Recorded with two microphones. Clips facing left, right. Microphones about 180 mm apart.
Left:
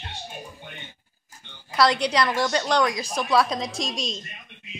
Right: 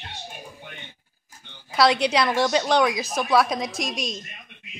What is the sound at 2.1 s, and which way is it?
Speech, 5° right (ahead or behind).